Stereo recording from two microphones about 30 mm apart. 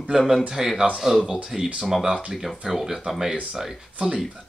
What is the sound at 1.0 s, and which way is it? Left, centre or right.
Speech, centre.